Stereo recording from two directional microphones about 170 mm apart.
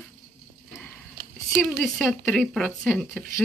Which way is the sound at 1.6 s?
Centre (ahead or behind).